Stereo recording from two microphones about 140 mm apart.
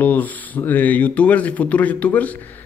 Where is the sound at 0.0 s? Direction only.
10° left (ahead or behind).